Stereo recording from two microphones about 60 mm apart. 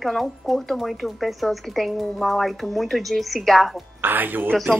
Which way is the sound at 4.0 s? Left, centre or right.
Right.